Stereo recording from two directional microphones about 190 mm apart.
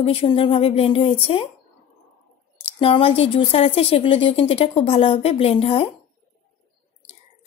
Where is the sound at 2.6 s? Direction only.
30° left (ahead or behind).